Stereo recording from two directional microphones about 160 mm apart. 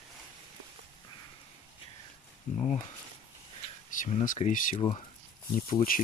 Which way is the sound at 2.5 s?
55° left (ahead or behind).